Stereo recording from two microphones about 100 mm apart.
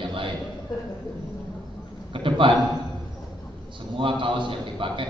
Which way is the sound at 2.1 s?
60° right (ahead or behind).